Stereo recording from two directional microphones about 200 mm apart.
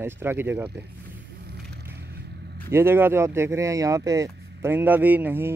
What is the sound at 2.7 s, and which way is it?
Speech, 10° right (ahead or behind).